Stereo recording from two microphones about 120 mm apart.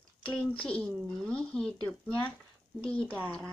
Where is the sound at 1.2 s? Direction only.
5° left (ahead or behind).